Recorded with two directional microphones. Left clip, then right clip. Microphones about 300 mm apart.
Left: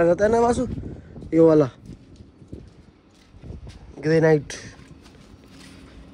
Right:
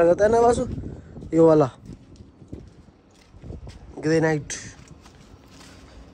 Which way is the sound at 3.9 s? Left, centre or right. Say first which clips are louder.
Left 3 dB; centre.